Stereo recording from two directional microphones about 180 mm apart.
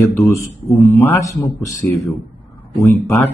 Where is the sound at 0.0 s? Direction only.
15° left (ahead or behind).